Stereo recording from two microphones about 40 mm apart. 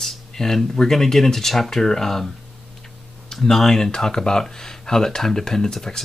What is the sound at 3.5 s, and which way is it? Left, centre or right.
Speech, centre.